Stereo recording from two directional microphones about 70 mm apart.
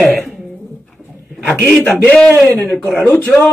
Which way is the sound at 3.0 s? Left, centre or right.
Left.